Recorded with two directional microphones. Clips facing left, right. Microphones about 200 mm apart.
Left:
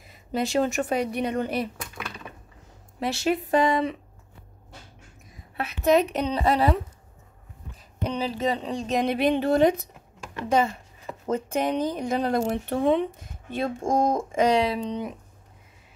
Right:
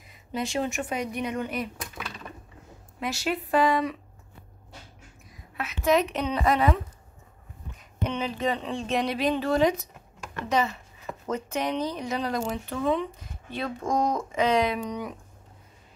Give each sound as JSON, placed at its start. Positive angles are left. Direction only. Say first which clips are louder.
{"t": 0.3, "sound": "speech", "louder": "left 5 dB", "side_deg": 40}
{"t": 3.0, "sound": "speech", "louder": "left 4 dB", "side_deg": 30}
{"t": 5.3, "sound": "a woman's voice", "louder": "left 3 dB", "side_deg": 35}
{"t": 8.0, "sound": "speech", "louder": "left 2 dB", "side_deg": 35}
{"t": 14.6, "sound": "speech", "louder": "left 1 dB", "side_deg": 30}